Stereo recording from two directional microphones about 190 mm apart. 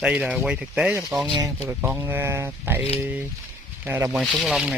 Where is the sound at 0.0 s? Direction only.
5° right (ahead or behind).